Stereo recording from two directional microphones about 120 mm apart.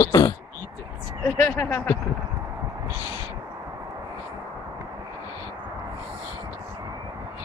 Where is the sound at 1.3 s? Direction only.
15° left (ahead or behind).